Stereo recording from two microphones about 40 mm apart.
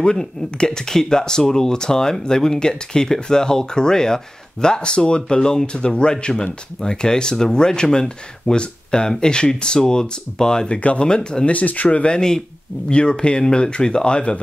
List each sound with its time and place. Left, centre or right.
0.0 s speech: centre
10.7 s speech: left
11.5 s speech: left